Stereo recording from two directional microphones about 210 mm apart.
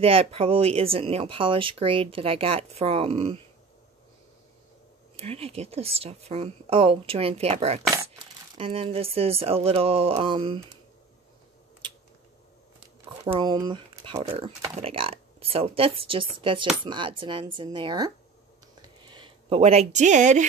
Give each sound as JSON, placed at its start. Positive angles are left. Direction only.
{"t": 0.0, "sound": "speech", "side_deg": -25}
{"t": 5.1, "sound": "speech", "side_deg": -30}
{"t": 13.2, "sound": "speech", "side_deg": -25}
{"t": 18.8, "sound": "a sound", "side_deg": -20}